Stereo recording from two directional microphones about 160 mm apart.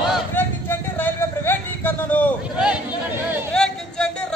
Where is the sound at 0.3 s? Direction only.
10° left (ahead or behind).